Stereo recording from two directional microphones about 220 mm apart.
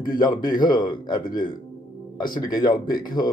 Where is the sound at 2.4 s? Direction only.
20° left (ahead or behind).